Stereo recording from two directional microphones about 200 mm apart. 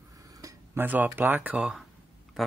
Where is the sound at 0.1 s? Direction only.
15° right (ahead or behind).